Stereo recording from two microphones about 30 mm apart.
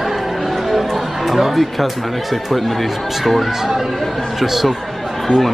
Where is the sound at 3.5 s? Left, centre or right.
Centre.